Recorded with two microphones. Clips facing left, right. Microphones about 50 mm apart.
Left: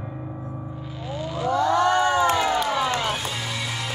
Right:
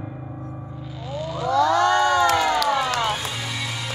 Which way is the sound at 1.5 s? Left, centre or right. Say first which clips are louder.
Right 2 dB; right.